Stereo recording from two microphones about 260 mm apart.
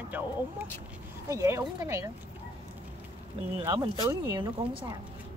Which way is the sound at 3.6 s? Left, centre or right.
Centre.